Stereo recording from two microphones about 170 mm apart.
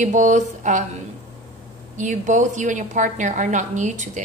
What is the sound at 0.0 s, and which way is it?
Speech, 45° right (ahead or behind).